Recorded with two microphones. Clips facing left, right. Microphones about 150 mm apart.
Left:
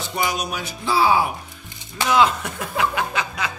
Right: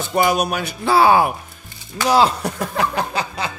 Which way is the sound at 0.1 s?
50° right (ahead or behind).